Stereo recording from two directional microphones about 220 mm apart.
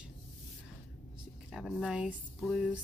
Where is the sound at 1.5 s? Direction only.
Centre (ahead or behind).